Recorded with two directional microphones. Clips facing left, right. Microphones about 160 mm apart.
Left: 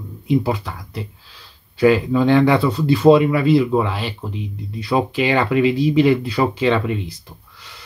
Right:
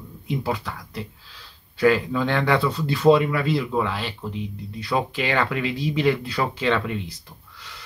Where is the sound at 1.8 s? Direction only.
15° left (ahead or behind).